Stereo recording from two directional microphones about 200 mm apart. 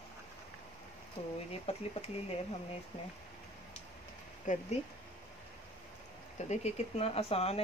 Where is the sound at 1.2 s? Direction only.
30° left (ahead or behind).